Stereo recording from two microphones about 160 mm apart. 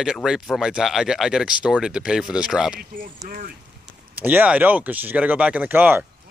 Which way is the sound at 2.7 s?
60° right (ahead or behind).